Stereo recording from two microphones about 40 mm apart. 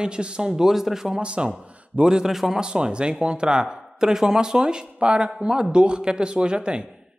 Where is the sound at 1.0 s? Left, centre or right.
Right.